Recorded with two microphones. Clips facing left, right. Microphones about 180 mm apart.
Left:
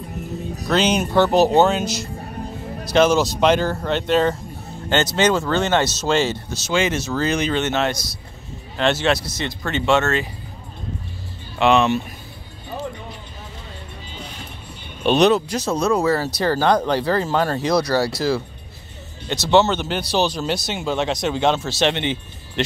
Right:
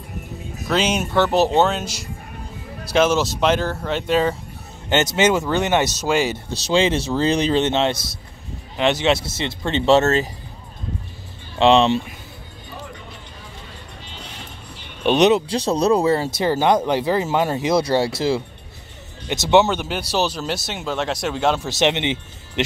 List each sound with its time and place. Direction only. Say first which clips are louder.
0.7 s speech: left 2 dB; 5° right (ahead or behind)
2.9 s speech: left 2 dB; 5° right (ahead or behind)
4.8 s speech: right 1 dB; 20° right (ahead or behind)
6.5 s speech: right 5 dB; 30° right (ahead or behind)
11.5 s speech: right 2 dB; 25° right (ahead or behind)
15.0 s speech: even; 20° right (ahead or behind)
16.3 s speech: even; 20° right (ahead or behind)
21.6 s speech: right 1 dB; 20° right (ahead or behind)